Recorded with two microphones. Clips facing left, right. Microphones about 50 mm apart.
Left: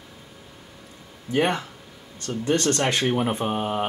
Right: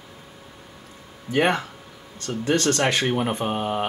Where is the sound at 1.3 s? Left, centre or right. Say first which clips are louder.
Right 2 dB; right.